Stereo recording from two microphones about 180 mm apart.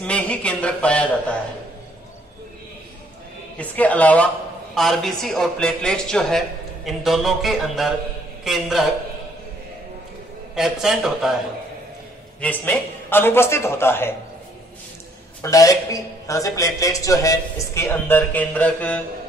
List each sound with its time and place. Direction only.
0.0 s a man's voice: 5° left (ahead or behind)
3.5 s a man's voice: 10° left (ahead or behind)
10.5 s a man's voice: centre (ahead or behind)
12.4 s a man's voice: 10° left (ahead or behind)
15.4 s a man's voice: 20° left (ahead or behind)